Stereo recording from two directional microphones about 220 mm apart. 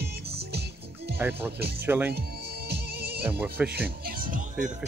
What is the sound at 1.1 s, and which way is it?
Speech, 10° right (ahead or behind).